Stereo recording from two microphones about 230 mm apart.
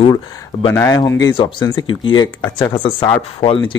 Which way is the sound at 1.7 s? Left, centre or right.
Left.